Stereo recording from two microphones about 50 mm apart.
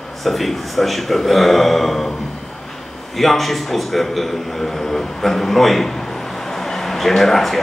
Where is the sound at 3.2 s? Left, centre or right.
Centre.